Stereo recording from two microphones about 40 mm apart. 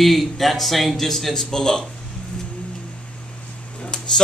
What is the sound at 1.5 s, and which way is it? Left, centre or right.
Speech, centre.